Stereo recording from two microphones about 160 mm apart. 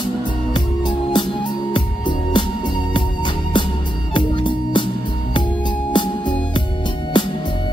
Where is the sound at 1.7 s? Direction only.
30° left (ahead or behind).